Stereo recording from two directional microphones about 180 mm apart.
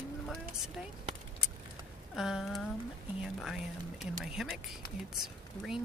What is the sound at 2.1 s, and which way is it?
Speech, 5° right (ahead or behind).